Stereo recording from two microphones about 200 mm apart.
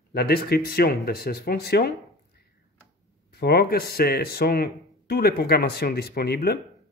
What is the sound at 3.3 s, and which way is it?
Speech, 50° left (ahead or behind).